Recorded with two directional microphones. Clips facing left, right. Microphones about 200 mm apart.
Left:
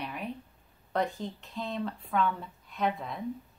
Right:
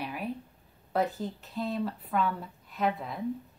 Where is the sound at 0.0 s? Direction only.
5° right (ahead or behind).